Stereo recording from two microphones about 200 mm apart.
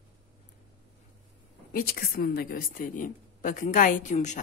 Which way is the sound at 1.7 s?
50° left (ahead or behind).